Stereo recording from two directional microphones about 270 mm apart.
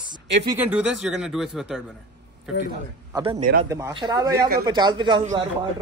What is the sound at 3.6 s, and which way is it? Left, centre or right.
Speech, centre.